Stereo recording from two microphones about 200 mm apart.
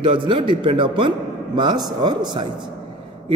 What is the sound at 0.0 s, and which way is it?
A man's voice, 25° right (ahead or behind).